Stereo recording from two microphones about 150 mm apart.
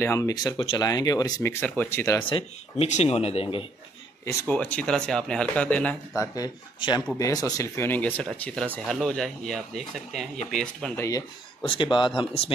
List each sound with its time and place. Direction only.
0.0 s speech: 20° left (ahead or behind)
2.2 s speech: 35° left (ahead or behind)
2.9 s speech: 45° left (ahead or behind)
4.5 s speech: 10° left (ahead or behind)
6.1 s speech: 25° left (ahead or behind); by 10.9 s 5° left (ahead or behind)
11.0 s speech: 20° left (ahead or behind)
11.6 s speech: 35° left (ahead or behind)